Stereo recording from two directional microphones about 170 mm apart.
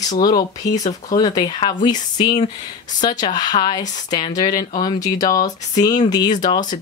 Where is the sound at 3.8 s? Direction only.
45° left (ahead or behind).